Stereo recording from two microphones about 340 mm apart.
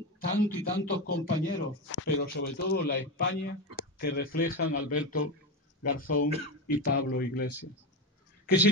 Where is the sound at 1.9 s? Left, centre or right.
Left.